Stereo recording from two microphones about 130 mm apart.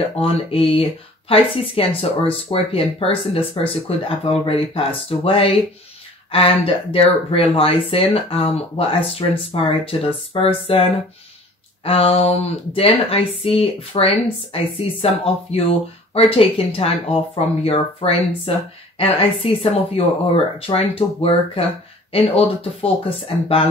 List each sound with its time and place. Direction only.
0.2 s speech: 45° left (ahead or behind)